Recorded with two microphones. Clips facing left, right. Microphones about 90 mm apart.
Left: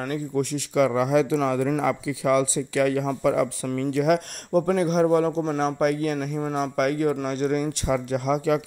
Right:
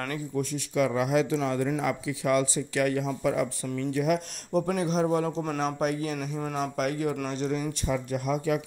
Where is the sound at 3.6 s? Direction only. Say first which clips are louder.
Left 5 dB; 90° left.